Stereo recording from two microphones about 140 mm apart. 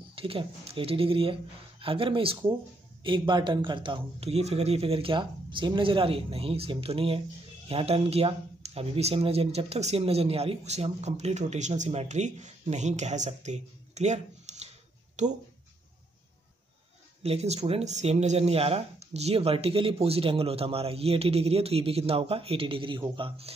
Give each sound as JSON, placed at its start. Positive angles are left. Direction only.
{"t": 0.1, "sound": "speech", "side_deg": -40}
{"t": 17.2, "sound": "speech", "side_deg": -50}